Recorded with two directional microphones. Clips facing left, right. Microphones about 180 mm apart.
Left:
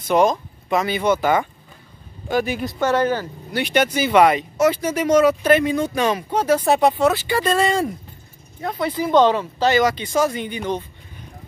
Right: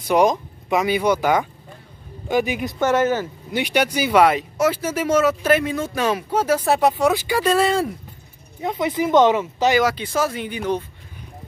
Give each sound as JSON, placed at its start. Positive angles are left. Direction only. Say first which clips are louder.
{"t": 0.1, "sound": "speech", "louder": "even", "side_deg": -15}
{"t": 8.5, "sound": "speech", "louder": "right 1 dB", "side_deg": -20}